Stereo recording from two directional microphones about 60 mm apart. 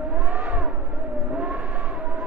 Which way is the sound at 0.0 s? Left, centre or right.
Right.